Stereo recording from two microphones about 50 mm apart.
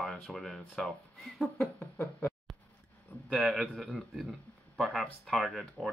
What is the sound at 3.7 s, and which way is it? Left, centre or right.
Speech, centre.